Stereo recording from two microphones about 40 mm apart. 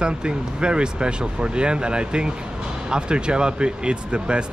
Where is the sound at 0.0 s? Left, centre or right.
Right.